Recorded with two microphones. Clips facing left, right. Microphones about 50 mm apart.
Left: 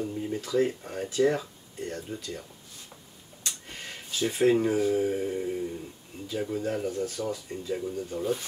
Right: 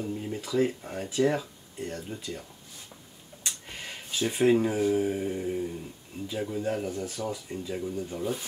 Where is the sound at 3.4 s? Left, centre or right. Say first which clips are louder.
Right 1 dB; centre.